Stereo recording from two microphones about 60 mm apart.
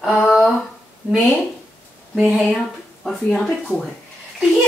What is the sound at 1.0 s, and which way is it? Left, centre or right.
Speech, right.